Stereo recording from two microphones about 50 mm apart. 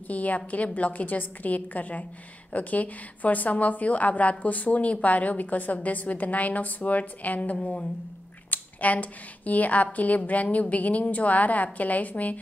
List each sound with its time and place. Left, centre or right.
0.1 s a woman's voice: left